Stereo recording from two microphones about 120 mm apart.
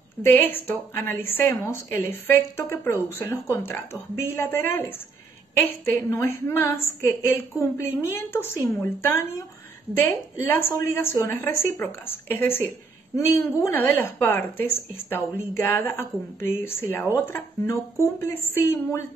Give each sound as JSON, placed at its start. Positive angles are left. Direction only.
{"t": 0.2, "sound": "a woman's voice", "side_deg": 15}